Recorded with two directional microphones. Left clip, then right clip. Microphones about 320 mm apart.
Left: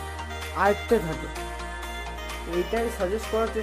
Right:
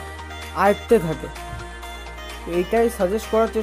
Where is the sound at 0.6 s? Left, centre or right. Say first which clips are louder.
Right 5 dB; centre.